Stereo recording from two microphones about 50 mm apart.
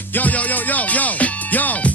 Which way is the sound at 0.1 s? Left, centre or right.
Left.